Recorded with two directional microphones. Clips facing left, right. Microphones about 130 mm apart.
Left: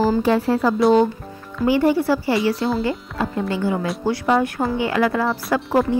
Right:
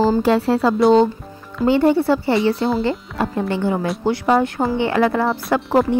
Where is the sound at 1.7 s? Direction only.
25° right (ahead or behind).